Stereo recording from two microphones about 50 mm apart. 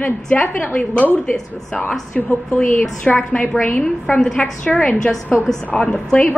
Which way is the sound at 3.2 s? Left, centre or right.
Left.